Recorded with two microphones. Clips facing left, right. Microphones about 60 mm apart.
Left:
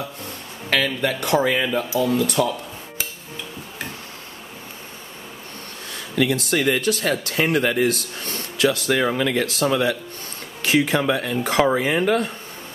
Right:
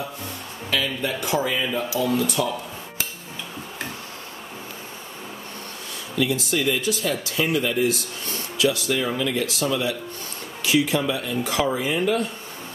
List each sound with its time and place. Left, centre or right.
0.7 s speech: left
5.9 s speech: left